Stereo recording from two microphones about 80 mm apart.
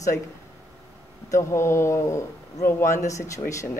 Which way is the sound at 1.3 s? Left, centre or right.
Left.